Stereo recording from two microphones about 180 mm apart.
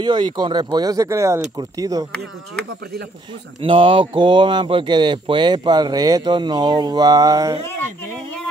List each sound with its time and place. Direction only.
0.0 s speech: 25° right (ahead or behind)
3.6 s speech: 30° right (ahead or behind)